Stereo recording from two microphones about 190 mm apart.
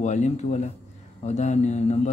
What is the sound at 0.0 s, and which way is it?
Speech, 35° left (ahead or behind).